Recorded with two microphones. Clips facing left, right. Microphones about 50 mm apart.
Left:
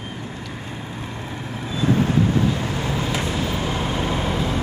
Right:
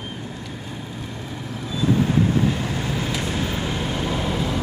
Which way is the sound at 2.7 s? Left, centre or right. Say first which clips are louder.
Left 1 dB; left.